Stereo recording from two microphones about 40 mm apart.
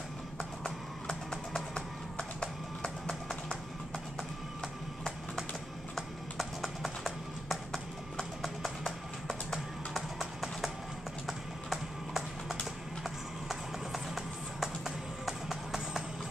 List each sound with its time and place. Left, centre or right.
2.1 s music: centre
5.9 s music: centre
11.2 s clip-clop: centre
13.0 s music: centre